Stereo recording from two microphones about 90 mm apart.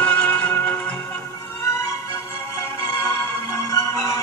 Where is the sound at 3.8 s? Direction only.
35° left (ahead or behind).